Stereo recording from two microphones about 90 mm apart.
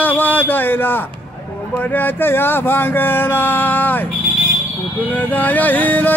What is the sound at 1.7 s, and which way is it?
Music, 20° left (ahead or behind).